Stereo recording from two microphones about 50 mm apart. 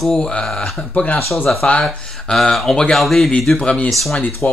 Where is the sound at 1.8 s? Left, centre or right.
Centre.